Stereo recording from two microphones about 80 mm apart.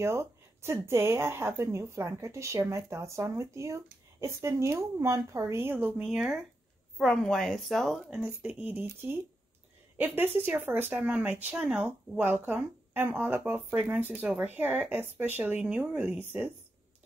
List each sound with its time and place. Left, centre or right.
0.0 s speech: right
5.9 s speech: centre
7.1 s speech: centre
8.4 s speech: centre
11.0 s speech: centre
11.2 s speech: right
11.5 s speech: centre
12.2 s speech: right